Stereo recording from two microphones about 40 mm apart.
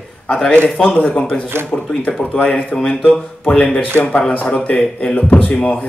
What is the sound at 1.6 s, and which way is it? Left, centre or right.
Speech, right.